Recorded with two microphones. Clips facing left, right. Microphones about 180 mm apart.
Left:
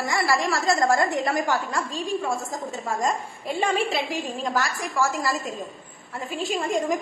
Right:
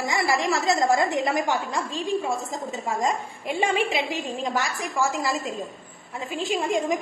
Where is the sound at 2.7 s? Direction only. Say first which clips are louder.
Even; 20° right (ahead or behind).